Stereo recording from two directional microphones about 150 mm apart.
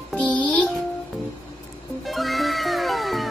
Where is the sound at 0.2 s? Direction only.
5° left (ahead or behind).